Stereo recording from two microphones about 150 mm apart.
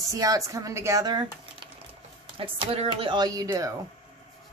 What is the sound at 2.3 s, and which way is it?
Speech, 40° right (ahead or behind).